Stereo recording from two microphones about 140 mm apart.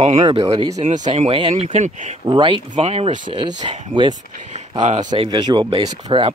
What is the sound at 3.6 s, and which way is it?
Speech, 35° right (ahead or behind).